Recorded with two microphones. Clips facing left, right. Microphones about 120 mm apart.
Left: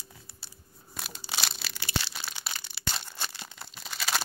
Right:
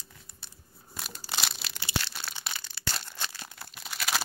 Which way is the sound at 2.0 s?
10° left (ahead or behind).